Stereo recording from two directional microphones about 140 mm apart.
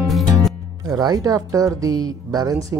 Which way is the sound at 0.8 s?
25° right (ahead or behind).